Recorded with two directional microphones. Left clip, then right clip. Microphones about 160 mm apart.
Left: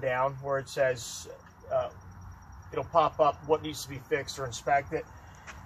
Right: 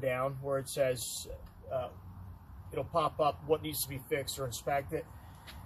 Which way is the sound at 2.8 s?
15° right (ahead or behind).